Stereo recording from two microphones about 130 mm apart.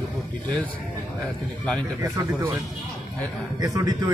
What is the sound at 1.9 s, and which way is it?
Speech, 25° right (ahead or behind).